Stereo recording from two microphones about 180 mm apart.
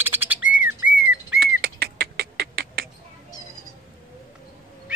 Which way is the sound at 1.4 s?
60° right (ahead or behind).